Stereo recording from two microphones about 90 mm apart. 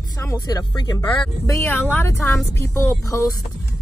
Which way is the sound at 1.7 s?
20° left (ahead or behind).